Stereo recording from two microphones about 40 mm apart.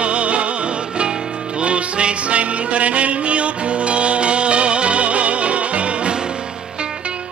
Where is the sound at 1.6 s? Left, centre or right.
Right.